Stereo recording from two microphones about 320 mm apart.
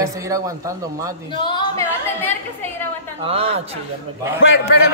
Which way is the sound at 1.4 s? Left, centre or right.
Centre.